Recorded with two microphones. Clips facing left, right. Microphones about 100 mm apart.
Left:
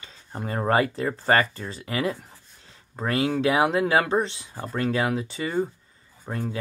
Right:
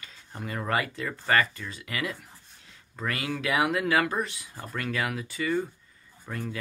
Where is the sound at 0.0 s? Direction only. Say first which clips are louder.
Left 5 dB; 30° left (ahead or behind).